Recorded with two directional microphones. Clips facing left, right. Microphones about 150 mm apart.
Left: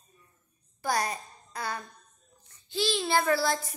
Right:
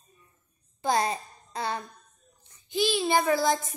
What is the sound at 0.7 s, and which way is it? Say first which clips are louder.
A child's voice: right 4 dB; 25° right (ahead or behind).